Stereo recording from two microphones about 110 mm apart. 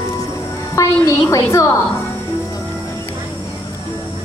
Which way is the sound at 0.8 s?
25° left (ahead or behind).